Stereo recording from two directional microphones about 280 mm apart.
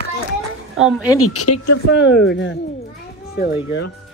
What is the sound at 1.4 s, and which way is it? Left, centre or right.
Speech, left.